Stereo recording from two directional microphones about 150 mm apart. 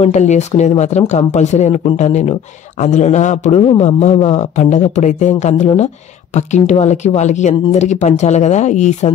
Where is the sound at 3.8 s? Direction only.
50° left (ahead or behind).